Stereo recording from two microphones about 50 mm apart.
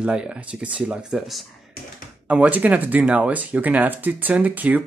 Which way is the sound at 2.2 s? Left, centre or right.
Right.